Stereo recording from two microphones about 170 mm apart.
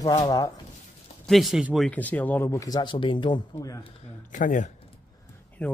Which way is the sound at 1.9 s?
10° left (ahead or behind).